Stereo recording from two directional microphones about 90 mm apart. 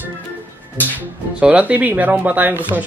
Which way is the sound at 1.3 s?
15° right (ahead or behind).